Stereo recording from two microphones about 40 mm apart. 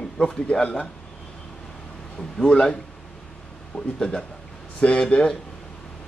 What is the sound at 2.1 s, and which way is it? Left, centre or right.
Speech, centre.